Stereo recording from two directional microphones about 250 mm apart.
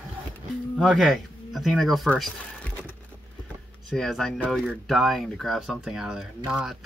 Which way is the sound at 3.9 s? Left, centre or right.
Centre.